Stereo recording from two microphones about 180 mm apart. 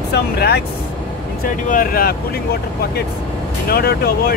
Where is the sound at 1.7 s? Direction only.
55° left (ahead or behind).